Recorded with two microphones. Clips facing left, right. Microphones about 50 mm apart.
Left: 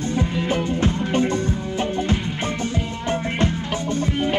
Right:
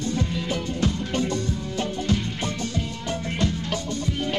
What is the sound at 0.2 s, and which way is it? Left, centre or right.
Music, left.